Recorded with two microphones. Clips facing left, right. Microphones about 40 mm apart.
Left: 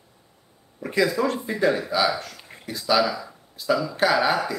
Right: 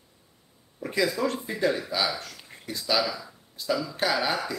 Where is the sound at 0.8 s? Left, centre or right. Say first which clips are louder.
Left 4 dB; centre.